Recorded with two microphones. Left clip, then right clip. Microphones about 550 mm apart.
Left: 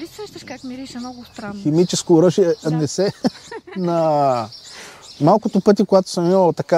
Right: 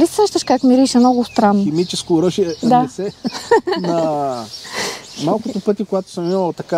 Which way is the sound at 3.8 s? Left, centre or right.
Left.